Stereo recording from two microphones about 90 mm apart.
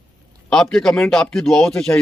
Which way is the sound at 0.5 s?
10° left (ahead or behind).